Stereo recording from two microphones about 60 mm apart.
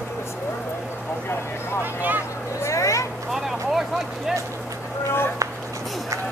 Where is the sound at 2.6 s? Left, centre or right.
Left.